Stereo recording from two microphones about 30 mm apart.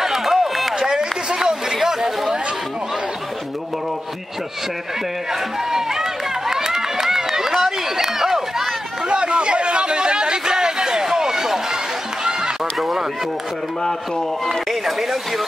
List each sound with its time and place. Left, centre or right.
0.0 s run: centre
0.7 s a sound: right
1.9 s chatter: centre
5.3 s run: centre
9.1 s a sound: right; by 11.8 s centre
12.3 s run: right
14.4 s speech: centre